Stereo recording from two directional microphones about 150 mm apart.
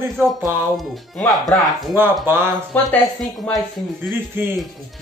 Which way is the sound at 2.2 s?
15° right (ahead or behind).